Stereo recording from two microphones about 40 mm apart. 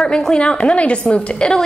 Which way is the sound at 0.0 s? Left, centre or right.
Centre.